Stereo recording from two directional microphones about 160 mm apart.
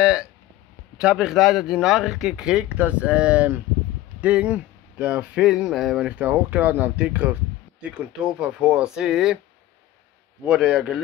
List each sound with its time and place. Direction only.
0.0 s a sound: 5° right (ahead or behind)
0.9 s speech: 5° right (ahead or behind)
10.4 s speech: 5° right (ahead or behind)